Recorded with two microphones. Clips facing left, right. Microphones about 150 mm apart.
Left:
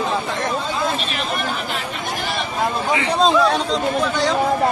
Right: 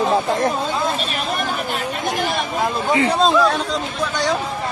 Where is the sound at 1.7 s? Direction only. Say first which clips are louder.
Right 3 dB; 45° right (ahead or behind).